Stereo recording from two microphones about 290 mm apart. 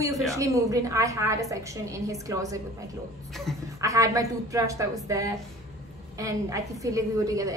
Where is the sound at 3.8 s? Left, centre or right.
Centre.